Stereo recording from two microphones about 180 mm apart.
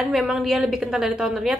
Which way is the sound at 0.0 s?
5° right (ahead or behind).